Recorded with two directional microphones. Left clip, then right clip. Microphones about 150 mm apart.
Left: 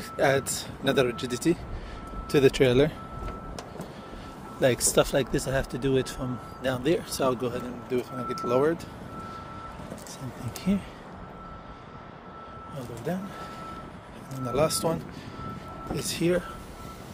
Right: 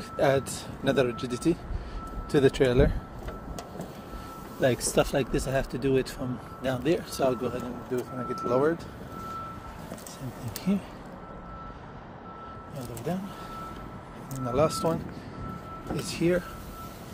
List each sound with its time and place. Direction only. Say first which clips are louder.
0.2 s speech: left 1 dB; 20° left (ahead or behind)
4.6 s speech: left 2 dB; 30° left (ahead or behind)
13.1 s speech: left 1 dB; 5° left (ahead or behind)
14.4 s speech: even; 25° left (ahead or behind)
16.1 s speech: even; 20° left (ahead or behind)